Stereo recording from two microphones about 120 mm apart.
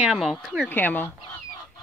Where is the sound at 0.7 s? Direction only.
15° left (ahead or behind).